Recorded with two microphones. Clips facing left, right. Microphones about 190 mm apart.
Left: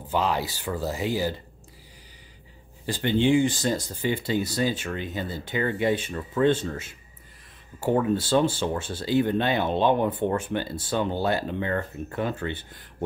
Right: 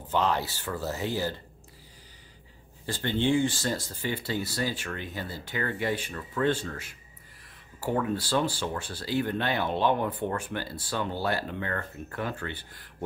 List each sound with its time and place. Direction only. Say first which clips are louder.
0.1 s speech: left 1 dB; 10° left (ahead or behind)
2.9 s speech: left 5 dB; 15° left (ahead or behind)